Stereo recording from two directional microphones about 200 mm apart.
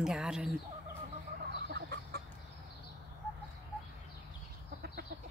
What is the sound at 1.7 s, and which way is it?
Chicken, 55° right (ahead or behind).